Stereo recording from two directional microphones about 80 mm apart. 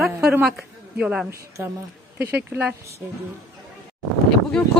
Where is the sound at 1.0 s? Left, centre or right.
Centre.